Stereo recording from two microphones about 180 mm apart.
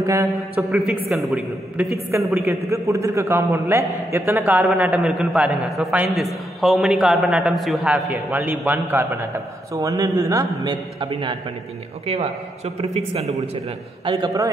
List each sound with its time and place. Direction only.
0.0 s a man's voice: 15° right (ahead or behind)
0.6 s a man's voice: centre (ahead or behind); by 13.4 s 35° right (ahead or behind)
14.0 s a man's voice: 20° right (ahead or behind)